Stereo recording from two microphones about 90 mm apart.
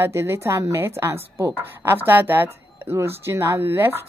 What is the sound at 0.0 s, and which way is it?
A woman's voice, 30° right (ahead or behind).